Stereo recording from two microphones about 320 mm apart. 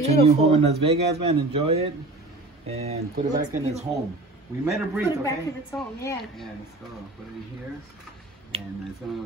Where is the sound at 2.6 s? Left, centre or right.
Centre.